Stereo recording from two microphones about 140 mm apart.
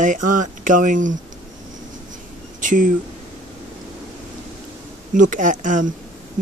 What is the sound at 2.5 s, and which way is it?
Speech, 65° right (ahead or behind).